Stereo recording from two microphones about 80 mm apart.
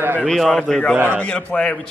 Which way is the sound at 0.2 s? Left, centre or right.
Centre.